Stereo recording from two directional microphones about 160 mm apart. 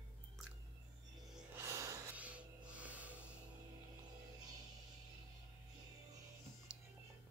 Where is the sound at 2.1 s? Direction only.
10° right (ahead or behind).